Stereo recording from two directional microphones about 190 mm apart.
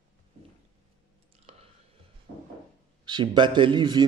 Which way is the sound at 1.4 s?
30° right (ahead or behind).